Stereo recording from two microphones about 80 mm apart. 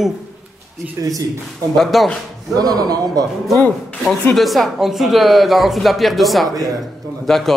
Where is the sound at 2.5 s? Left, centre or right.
Right.